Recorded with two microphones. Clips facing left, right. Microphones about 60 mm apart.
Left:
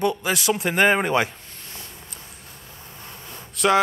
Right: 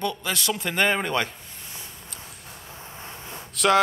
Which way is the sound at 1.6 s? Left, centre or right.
Centre.